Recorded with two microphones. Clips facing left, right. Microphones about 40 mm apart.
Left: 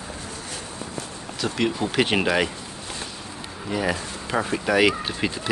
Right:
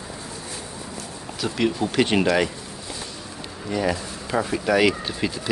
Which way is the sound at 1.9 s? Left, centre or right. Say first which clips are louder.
Right 1 dB; centre.